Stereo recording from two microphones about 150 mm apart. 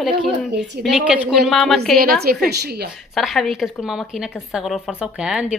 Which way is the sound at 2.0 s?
85° right.